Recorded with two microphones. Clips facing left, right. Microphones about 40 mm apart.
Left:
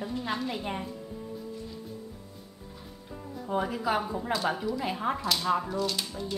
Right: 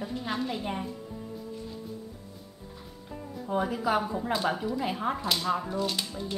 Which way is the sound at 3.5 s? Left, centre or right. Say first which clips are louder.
Right 1 dB; centre.